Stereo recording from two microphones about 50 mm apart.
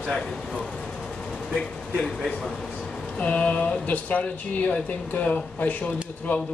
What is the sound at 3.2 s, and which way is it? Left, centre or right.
Speech, left.